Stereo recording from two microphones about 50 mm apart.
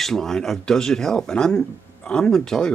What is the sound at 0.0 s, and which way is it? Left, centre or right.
Speech, centre.